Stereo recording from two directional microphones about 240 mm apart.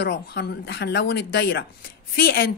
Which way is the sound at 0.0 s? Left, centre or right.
Left.